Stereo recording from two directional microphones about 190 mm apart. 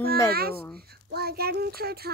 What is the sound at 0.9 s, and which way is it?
Speech, 55° right (ahead or behind).